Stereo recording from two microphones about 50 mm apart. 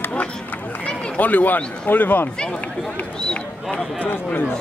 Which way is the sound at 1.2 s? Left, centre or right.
Left.